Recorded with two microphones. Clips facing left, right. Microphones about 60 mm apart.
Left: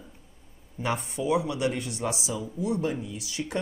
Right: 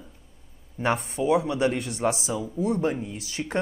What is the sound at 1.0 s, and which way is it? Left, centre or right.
Speech, right.